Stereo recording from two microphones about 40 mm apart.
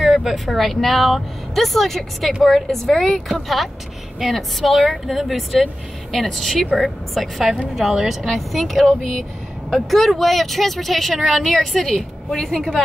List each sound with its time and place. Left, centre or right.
0.0 s a woman's voice: centre
7.9 s a woman's voice: centre
8.3 s a woman's voice: centre